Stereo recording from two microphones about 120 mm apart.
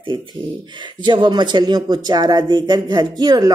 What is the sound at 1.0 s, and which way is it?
Speech, 40° right (ahead or behind).